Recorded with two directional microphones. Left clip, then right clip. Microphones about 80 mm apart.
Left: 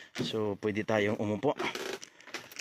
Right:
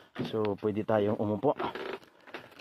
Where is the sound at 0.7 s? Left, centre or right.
Centre.